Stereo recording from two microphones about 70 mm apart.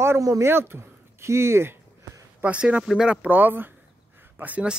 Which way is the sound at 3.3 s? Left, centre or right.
Right.